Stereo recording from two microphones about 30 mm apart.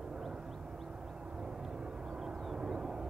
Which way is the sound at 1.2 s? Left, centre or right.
Right.